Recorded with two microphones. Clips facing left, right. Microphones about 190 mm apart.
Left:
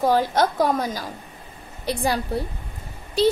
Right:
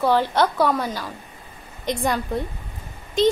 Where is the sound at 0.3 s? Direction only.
40° left (ahead or behind).